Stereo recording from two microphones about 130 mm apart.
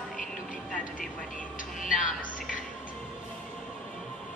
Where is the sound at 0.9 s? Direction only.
90° left.